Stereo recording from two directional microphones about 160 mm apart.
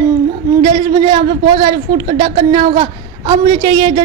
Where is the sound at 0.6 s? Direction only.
35° right (ahead or behind).